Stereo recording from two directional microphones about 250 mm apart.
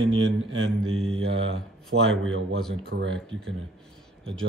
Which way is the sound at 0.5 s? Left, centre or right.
Right.